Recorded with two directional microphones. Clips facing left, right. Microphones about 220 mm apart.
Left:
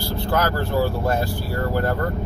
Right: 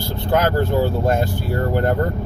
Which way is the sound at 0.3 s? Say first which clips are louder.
Right 5 dB; 20° right (ahead or behind).